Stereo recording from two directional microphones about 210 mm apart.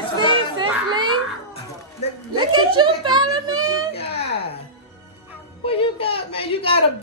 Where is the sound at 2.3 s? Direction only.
25° right (ahead or behind).